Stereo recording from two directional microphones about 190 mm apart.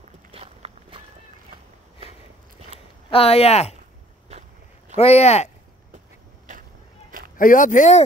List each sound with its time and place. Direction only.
0.3 s walk: 30° right (ahead or behind)
3.1 s speech: 30° left (ahead or behind)
4.3 s walk: 35° right (ahead or behind)
4.9 s speech: 35° left (ahead or behind)
7.1 s a sound: 45° right (ahead or behind)
7.3 s speech: 45° left (ahead or behind)